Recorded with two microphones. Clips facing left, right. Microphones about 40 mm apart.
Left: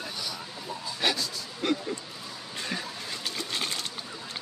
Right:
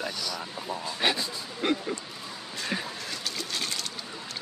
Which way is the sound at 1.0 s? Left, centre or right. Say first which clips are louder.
Right 1 dB; right.